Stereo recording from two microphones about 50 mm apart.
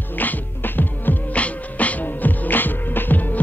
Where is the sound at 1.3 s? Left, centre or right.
Left.